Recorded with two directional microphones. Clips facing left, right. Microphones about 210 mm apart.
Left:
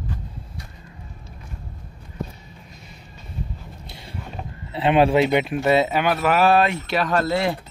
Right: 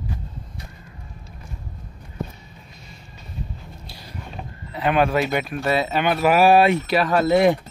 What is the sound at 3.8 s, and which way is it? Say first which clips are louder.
Creak: left 1 dB; 25° left (ahead or behind).